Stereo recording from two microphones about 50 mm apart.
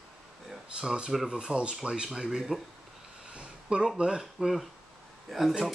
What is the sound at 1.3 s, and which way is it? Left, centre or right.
Speech, centre.